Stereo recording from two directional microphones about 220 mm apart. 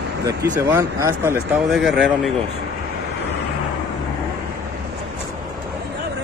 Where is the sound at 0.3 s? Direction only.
15° right (ahead or behind).